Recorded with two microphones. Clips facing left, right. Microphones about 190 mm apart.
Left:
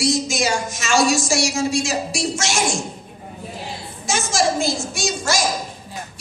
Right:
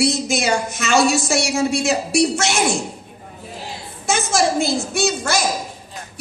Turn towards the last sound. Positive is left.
turn(degrees=-60)  # may be behind; listen again after turning